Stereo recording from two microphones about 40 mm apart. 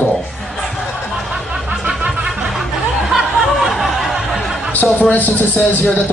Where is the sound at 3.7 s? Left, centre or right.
Centre.